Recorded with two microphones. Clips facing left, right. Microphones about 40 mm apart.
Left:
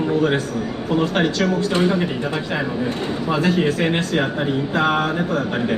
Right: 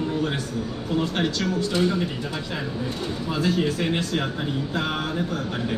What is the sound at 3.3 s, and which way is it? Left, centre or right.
Speech, left.